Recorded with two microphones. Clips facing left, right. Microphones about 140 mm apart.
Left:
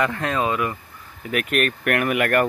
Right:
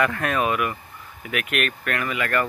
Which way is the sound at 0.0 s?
20° left (ahead or behind).